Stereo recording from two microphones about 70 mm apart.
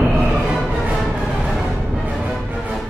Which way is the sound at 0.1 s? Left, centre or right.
Centre.